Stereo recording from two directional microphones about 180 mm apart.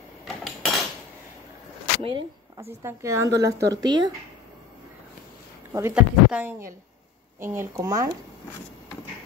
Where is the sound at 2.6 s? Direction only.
15° right (ahead or behind).